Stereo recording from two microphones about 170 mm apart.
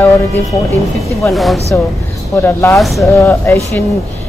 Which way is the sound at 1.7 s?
10° left (ahead or behind).